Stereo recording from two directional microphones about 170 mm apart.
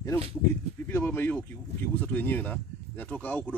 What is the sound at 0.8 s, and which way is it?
Speech, 15° left (ahead or behind).